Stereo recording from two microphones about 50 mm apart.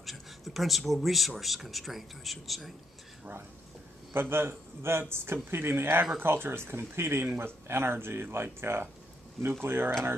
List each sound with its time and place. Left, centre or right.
0.0 s speech: centre
4.1 s a man's voice: right